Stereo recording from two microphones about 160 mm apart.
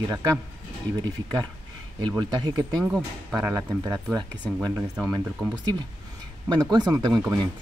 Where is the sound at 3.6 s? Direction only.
20° right (ahead or behind).